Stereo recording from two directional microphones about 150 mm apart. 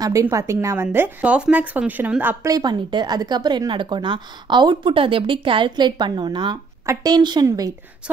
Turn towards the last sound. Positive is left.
turn(degrees=-25)  # may be behind; listen again after turning